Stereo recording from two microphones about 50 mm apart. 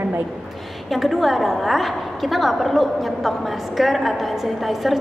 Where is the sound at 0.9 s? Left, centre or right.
Centre.